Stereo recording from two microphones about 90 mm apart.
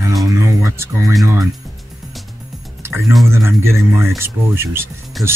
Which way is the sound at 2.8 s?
30° right (ahead or behind).